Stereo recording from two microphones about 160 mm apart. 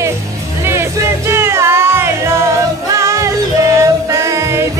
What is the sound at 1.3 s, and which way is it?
Music, 15° right (ahead or behind).